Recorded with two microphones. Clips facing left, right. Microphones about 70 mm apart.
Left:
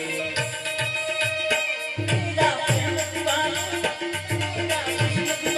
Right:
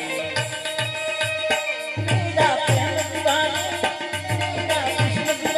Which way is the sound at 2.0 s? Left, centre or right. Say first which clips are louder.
Right 3 dB; right.